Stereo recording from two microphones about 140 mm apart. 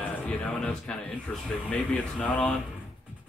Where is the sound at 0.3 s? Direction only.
10° left (ahead or behind).